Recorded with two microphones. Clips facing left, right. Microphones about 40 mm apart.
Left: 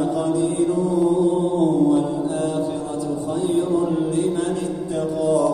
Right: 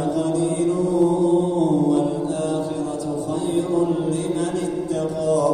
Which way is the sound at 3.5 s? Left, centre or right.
Centre.